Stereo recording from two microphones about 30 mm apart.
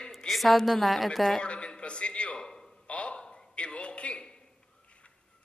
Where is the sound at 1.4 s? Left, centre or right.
Left.